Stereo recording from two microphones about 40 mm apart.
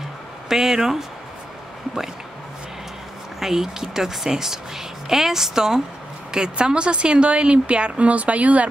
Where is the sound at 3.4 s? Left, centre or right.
Centre.